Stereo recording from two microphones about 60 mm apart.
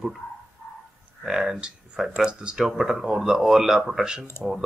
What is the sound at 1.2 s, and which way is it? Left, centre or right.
Speech, centre.